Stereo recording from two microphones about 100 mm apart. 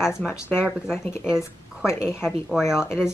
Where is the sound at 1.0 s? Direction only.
25° left (ahead or behind).